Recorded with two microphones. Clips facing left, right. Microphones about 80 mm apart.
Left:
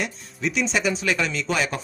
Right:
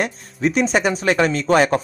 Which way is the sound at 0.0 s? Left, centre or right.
Right.